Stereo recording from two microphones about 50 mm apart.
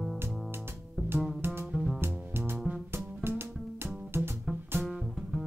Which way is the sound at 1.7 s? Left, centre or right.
Centre.